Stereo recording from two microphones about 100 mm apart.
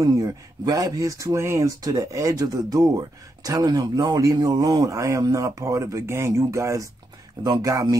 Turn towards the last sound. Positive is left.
turn(degrees=-35)  # may be behind; listen again after turning